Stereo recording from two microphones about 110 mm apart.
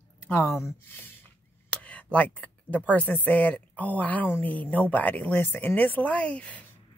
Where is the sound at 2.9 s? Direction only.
15° left (ahead or behind).